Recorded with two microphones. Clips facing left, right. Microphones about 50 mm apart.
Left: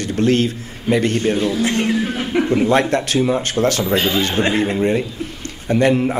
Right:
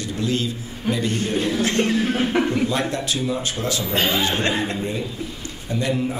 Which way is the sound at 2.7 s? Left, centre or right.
Left.